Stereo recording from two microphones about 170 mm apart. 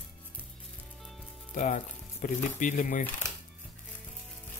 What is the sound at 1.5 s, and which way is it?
Speech, 50° left (ahead or behind).